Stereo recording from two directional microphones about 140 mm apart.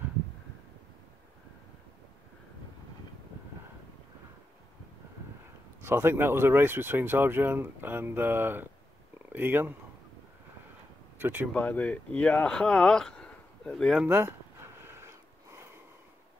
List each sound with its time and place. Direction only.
5.8 s speech: 15° right (ahead or behind)
11.1 s speech: 15° right (ahead or behind)
11.5 s speech: 10° left (ahead or behind)
14.0 s a sound: 15° right (ahead or behind)